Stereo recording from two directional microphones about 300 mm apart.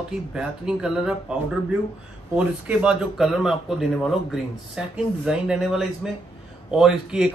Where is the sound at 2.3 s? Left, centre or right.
Centre.